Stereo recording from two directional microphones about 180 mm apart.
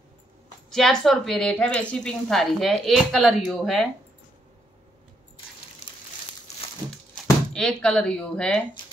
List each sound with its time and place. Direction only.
0.7 s speech: centre (ahead or behind)
5.8 s crumpling: 35° left (ahead or behind)
6.9 s a sound: 5° left (ahead or behind)